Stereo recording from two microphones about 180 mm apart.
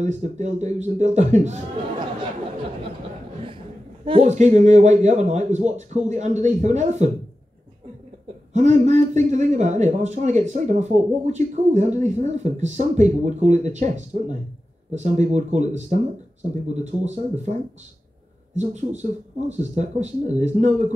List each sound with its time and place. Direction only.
0.0 s speech: 40° right (ahead or behind)
3.4 s speech: 30° right (ahead or behind)
8.5 s speech: 40° right (ahead or behind)